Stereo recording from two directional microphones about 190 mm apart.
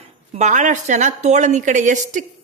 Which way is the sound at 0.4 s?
40° right (ahead or behind).